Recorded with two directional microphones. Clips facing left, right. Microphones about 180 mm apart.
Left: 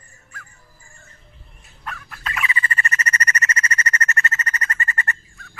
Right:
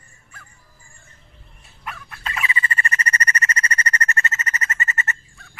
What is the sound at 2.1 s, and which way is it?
Squeal, 30° right (ahead or behind).